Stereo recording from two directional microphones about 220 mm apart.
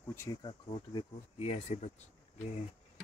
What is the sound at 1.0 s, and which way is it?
Speech, 25° left (ahead or behind).